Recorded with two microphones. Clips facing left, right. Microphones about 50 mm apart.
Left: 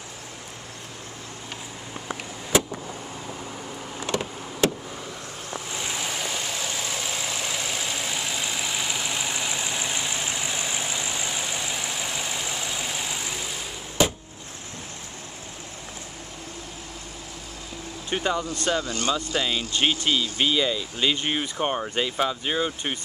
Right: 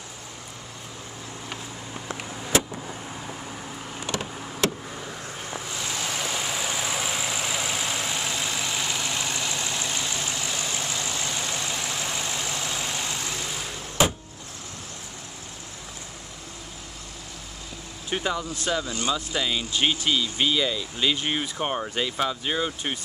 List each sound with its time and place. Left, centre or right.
2.5 s vehicle: centre
5.7 s vehicle: centre
5.9 s vehicle: centre
18.1 s speech: centre
19.3 s speech: centre